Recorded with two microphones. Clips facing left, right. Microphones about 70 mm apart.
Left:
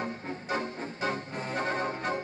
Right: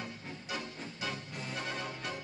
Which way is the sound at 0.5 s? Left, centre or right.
Left.